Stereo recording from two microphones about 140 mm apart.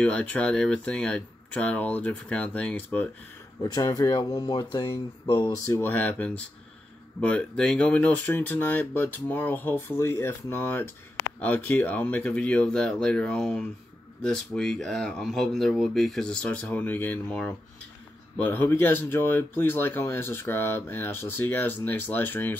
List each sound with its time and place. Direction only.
0.0 s speech: 10° left (ahead or behind)
3.6 s speech: 25° left (ahead or behind)
5.7 s speech: 15° left (ahead or behind)